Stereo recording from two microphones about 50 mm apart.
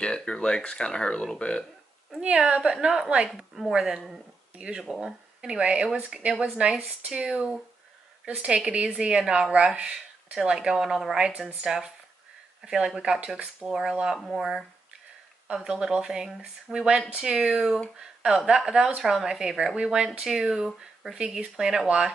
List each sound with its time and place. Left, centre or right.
0.0 s speech: centre
2.2 s speech: right
4.8 s speech: centre
5.4 s speech: centre
8.3 s speech: right; by 11.1 s centre
11.1 s speech: centre